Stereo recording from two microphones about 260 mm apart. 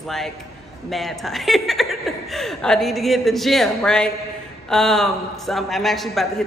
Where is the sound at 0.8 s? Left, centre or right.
Centre.